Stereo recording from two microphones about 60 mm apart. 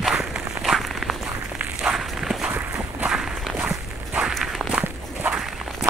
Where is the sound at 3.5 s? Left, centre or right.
Right.